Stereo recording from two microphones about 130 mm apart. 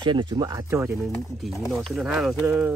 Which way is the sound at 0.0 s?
35° right (ahead or behind).